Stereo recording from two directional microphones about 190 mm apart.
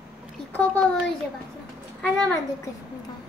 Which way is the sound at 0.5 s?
5° left (ahead or behind).